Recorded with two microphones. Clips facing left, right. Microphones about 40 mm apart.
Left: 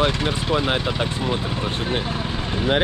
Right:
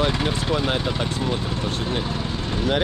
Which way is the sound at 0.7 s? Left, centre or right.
Centre.